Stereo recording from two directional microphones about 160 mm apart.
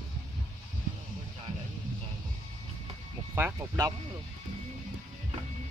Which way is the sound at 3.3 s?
15° right (ahead or behind).